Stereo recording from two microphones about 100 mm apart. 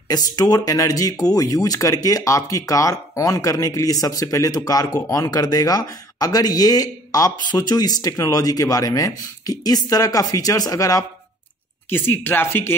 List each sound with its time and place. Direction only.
0.1 s speech: 40° left (ahead or behind)
11.9 s speech: 20° left (ahead or behind)